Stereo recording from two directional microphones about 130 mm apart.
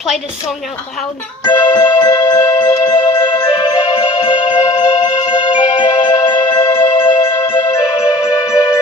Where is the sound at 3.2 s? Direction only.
40° left (ahead or behind).